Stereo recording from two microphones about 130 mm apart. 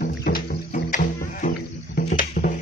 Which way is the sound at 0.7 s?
80° left.